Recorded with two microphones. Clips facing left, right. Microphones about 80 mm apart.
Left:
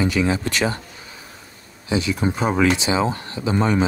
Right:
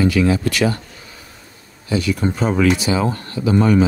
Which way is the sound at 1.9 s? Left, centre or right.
Left.